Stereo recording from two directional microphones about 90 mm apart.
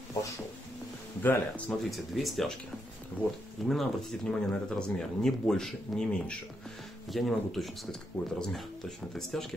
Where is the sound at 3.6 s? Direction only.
Centre (ahead or behind).